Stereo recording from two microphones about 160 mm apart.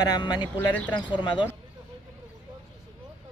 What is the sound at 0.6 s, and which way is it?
Speech, 10° left (ahead or behind).